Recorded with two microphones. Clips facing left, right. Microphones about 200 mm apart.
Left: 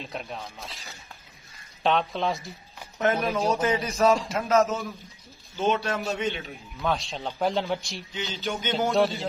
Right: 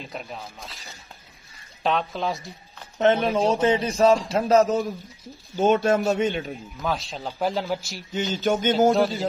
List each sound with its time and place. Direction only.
0.0 s speech: centre (ahead or behind)
1.8 s speech: centre (ahead or behind)
3.0 s a man's voice: 30° right (ahead or behind); by 6.5 s 45° right (ahead or behind)
6.8 s speech: centre (ahead or behind)
8.1 s a man's voice: 50° right (ahead or behind)
8.9 s speech: centre (ahead or behind)